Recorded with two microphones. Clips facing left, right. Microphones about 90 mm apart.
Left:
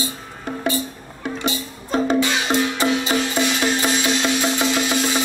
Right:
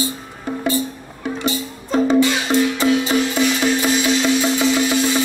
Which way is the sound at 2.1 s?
20° left (ahead or behind).